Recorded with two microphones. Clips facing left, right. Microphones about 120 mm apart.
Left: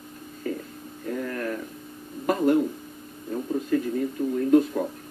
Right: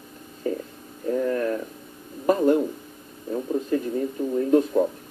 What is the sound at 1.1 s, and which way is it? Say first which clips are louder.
Speech: right 6 dB; 20° right (ahead or behind).